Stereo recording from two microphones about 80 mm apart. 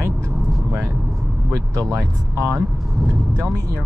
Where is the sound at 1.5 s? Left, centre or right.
Right.